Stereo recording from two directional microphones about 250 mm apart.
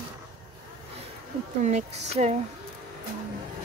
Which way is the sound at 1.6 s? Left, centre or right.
Right.